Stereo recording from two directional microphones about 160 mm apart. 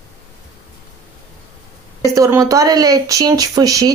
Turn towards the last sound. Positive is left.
turn(degrees=-20)  # may be behind; listen again after turning